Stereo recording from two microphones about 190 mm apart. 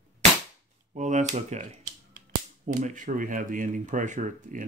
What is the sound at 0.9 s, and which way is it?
Speech, 40° right (ahead or behind).